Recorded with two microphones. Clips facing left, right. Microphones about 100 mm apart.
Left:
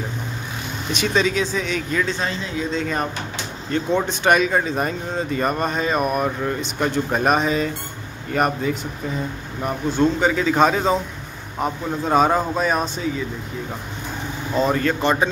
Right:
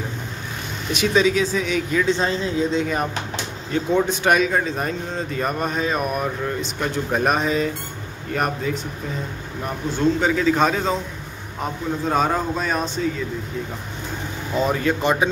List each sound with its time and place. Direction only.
0.9 s speech: 5° right (ahead or behind)
2.0 s speech: 25° right (ahead or behind)
2.8 s speech: 10° right (ahead or behind)
14.5 s speech: 5° right (ahead or behind)